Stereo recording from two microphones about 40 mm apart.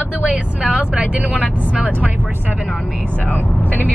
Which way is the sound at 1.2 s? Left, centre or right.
Right.